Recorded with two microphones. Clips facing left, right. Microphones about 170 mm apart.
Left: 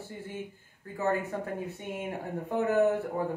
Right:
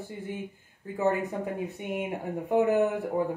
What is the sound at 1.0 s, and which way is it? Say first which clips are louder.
Speech: right 3 dB; 15° right (ahead or behind).